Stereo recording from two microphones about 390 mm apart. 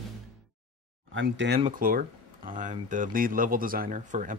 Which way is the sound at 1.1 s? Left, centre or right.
Right.